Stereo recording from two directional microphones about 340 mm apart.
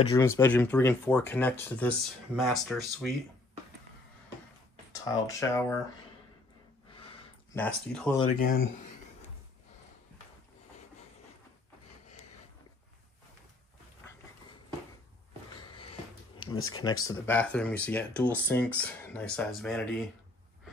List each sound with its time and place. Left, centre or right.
0.1 s speech: centre
5.0 s speech: centre
7.5 s speech: centre
8.4 s speech: left
16.5 s speech: left
17.0 s speech: centre